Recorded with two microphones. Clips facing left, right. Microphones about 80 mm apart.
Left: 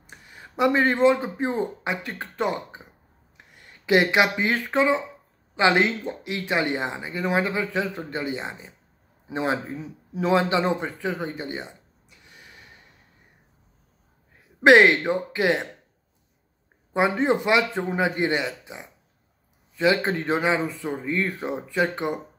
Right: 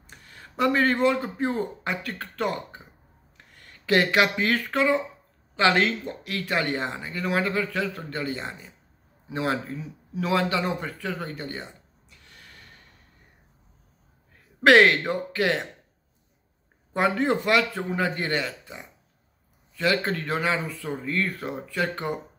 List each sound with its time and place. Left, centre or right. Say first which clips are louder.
0.0 s speech: left 2 dB; centre
10.1 s a sound: left 3 dB; left
14.6 s speech: left 2 dB; centre
16.9 s speech: left 2 dB; centre